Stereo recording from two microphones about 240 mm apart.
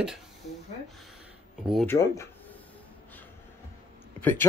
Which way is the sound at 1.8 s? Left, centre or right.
Centre.